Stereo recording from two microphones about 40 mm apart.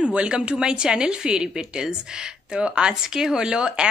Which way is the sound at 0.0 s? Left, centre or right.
Right.